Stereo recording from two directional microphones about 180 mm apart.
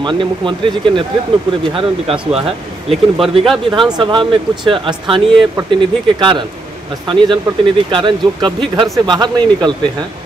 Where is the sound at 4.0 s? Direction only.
25° right (ahead or behind).